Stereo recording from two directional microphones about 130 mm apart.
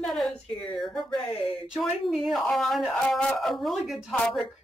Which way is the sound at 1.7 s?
Centre (ahead or behind).